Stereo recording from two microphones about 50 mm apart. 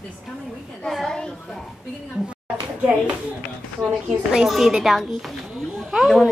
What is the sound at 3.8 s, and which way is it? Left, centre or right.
Speech, centre.